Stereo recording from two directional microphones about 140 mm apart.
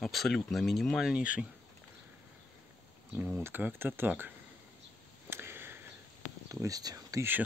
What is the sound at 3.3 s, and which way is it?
Speech, 15° right (ahead or behind).